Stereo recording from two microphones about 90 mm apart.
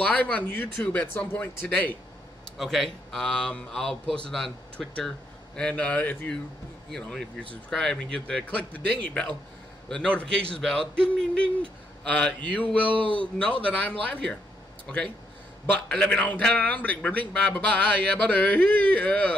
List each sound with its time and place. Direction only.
0.0 s a man's voice: 15° left (ahead or behind)
2.5 s a man's voice: centre (ahead or behind); by 12.9 s 15° left (ahead or behind)
12.9 s speech: 70° right (ahead or behind)
13.4 s a man's voice: 15° left (ahead or behind)
15.6 s a man's voice: 15° left (ahead or behind)